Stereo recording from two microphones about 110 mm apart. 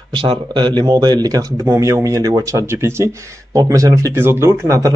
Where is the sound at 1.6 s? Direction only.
25° right (ahead or behind).